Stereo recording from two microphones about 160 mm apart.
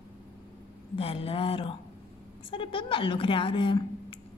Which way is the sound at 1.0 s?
35° left (ahead or behind).